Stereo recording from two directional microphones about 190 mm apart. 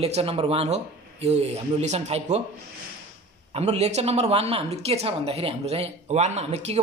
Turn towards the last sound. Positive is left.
turn(degrees=-35)  # may be behind; listen again after turning